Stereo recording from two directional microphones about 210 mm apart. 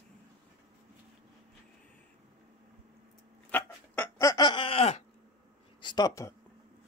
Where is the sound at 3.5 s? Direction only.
10° left (ahead or behind); by 5.0 s 30° left (ahead or behind).